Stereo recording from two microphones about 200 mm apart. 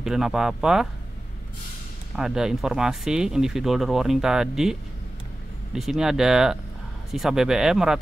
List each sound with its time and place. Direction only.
0.0 s speech: centre (ahead or behind)
2.1 s speech: 5° right (ahead or behind)
5.8 s speech: centre (ahead or behind)